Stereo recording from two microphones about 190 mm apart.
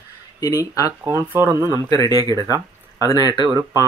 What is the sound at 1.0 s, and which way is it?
Speech, 15° right (ahead or behind).